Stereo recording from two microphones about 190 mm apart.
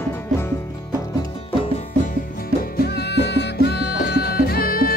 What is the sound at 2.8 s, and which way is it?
Music, 60° left (ahead or behind).